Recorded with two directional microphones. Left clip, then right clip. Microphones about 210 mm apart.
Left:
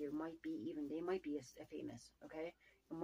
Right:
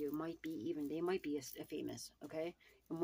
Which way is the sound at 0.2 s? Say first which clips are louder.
Right 2 dB; 55° right (ahead or behind).